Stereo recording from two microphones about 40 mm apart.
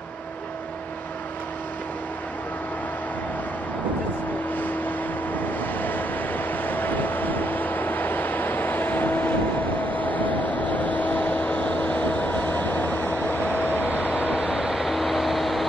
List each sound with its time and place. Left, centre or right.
5.8 s vehicle: left
14.3 s vehicle: centre